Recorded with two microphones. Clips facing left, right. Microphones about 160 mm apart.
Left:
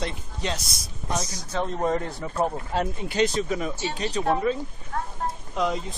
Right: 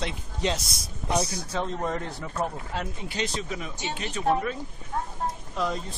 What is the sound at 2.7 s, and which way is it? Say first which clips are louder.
Speech: left 6 dB; 50° left (ahead or behind).